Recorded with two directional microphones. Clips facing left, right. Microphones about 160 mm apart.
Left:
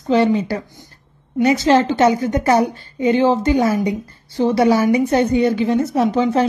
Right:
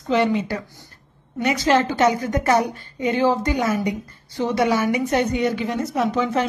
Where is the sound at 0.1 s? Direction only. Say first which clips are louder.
Left 4 dB; 35° left (ahead or behind).